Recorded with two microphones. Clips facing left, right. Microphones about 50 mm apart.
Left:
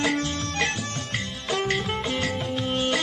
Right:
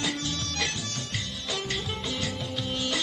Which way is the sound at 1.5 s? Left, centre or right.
Left.